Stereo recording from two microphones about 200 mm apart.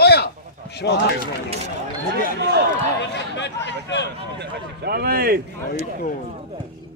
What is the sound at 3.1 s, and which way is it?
Speech, 60° left (ahead or behind).